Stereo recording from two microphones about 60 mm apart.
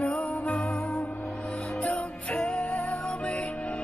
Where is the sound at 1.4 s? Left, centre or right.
Centre.